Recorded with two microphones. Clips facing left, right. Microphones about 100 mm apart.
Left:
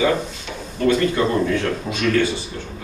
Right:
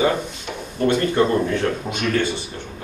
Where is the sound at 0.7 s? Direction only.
25° right (ahead or behind).